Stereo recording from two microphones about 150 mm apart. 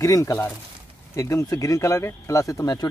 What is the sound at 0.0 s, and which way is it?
Speech, 20° left (ahead or behind).